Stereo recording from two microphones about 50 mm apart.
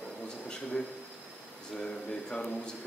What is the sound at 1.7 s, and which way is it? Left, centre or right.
Speech, centre.